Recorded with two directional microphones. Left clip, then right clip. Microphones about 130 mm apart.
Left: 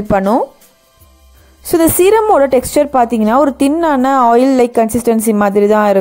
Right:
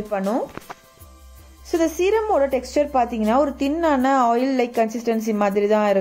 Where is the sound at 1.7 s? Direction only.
90° left.